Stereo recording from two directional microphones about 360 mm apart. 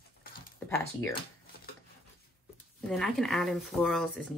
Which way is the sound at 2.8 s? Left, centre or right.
Centre.